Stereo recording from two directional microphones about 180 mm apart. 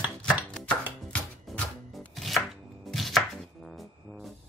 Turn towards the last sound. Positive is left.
turn(degrees=0)  # may be behind; listen again after turning